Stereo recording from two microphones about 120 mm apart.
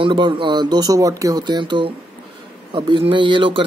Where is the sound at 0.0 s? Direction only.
40° right (ahead or behind).